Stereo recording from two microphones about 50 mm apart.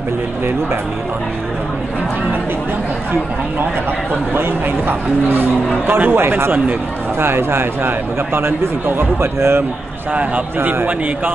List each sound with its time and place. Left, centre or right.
4.3 s speech: right
10.1 s a man's voice: right
10.7 s a man's voice: right